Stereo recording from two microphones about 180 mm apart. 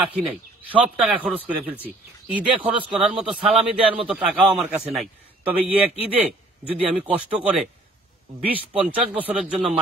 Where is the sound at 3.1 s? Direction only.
5° right (ahead or behind).